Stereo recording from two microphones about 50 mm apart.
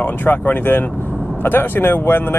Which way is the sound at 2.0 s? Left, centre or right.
Left.